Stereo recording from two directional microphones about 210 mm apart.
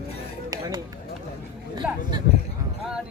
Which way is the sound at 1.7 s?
20° right (ahead or behind).